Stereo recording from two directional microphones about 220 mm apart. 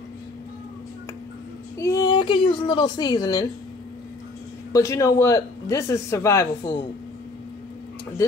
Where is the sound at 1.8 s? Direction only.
15° left (ahead or behind).